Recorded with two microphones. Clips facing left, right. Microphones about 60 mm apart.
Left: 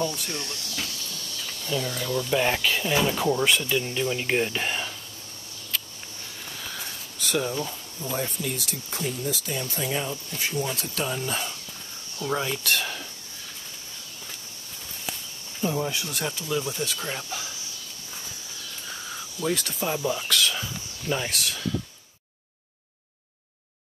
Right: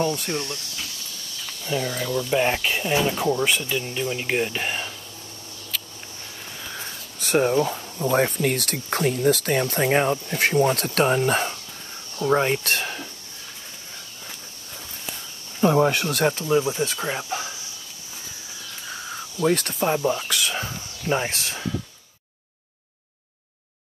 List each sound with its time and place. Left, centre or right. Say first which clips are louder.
0.0 s speech: right 5 dB; right
1.7 s speech: right 3 dB; right
2.0 s speech: right 2 dB; centre
6.6 s a sound: right 2 dB; centre
7.2 s speech: right 8 dB; right
12.7 s a sound: right 1 dB; right
15.6 s speech: right 9 dB; right
16.6 s speech: right 5 dB; right
19.5 s speech: right 6 dB; right
20.1 s speech: right 1 dB; centre
20.5 s a sound: right 4 dB; right